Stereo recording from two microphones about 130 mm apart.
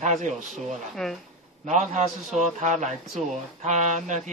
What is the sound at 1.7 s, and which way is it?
Speech, 65° right (ahead or behind).